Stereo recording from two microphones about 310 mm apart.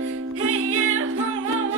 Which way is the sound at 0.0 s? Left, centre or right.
Right.